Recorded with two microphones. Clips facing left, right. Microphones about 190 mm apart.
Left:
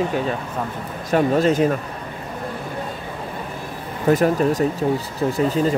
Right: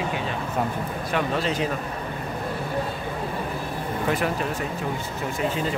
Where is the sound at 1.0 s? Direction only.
45° left (ahead or behind).